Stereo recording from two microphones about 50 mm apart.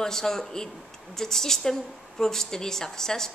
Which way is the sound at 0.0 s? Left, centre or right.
Centre.